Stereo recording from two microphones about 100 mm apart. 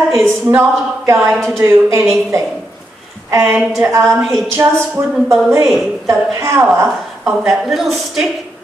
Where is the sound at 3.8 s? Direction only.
30° right (ahead or behind).